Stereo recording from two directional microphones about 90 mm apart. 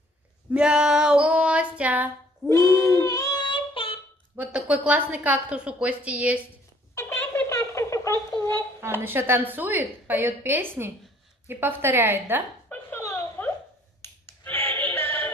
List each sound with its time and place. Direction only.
0.5 s female singing: 10° right (ahead or behind)
2.5 s child singing: 35° left (ahead or behind)
3.4 s child singing: 70° left (ahead or behind)
4.4 s a woman's voice: 15° right (ahead or behind)
7.2 s a sound: 25° left (ahead or behind)
9.0 s a woman's voice: 25° right (ahead or behind)
12.6 s a sound: 25° left (ahead or behind)
14.0 s finger snapping: 25° left (ahead or behind)